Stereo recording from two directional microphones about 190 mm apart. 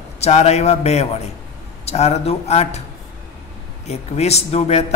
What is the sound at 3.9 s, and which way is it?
Speech, 35° left (ahead or behind).